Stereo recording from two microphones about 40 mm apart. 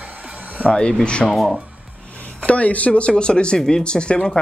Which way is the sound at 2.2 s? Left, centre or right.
Left.